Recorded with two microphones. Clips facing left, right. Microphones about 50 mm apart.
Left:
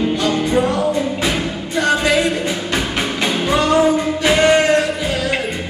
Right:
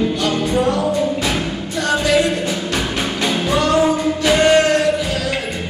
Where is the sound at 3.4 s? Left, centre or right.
Left.